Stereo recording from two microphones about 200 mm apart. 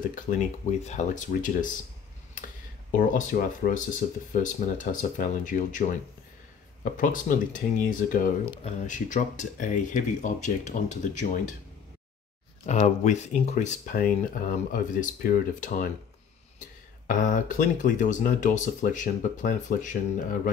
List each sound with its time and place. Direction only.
0.1 s speech: 40° left (ahead or behind)
3.0 s speech: 40° left (ahead or behind)
12.6 s speech: 35° left (ahead or behind)
17.1 s speech: 40° left (ahead or behind)